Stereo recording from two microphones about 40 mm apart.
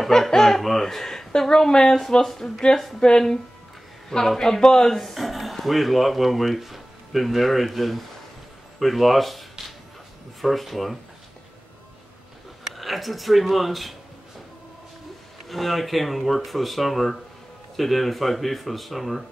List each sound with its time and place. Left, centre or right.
0.0 s speech: centre
0.3 s a sound: centre
1.7 s speech: centre
3.0 s speech: centre
4.4 s speech: centre
12.6 s speech: centre
15.4 s speech: centre